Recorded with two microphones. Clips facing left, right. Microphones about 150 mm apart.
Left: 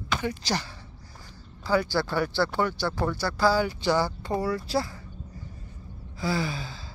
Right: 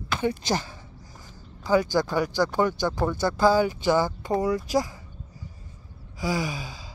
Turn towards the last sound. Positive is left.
turn(degrees=-15)  # may be behind; listen again after turning